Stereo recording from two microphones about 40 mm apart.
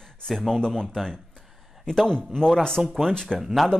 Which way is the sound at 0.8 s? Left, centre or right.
Centre.